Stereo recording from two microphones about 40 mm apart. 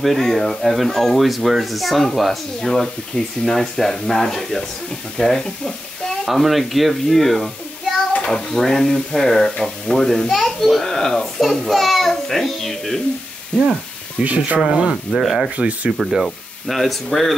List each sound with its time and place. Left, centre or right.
0.0 s speech: centre
6.2 s a child's voice: centre
10.8 s a child's voice: centre
14.2 s speech: right
14.6 s speech: centre
15.5 s speech: right
16.0 s speech: centre